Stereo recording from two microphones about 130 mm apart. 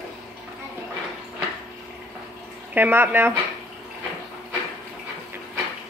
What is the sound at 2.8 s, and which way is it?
Speech, 15° right (ahead or behind).